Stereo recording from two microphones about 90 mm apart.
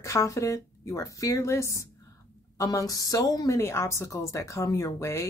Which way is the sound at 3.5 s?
30° left (ahead or behind).